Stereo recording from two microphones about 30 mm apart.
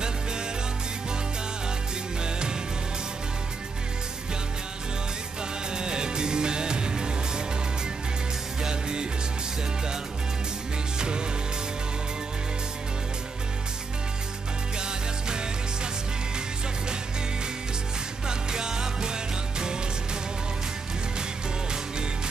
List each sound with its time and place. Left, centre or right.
5.7 s music: right
8.6 s music: right
11.0 s music: right
14.8 s music: right
18.2 s music: right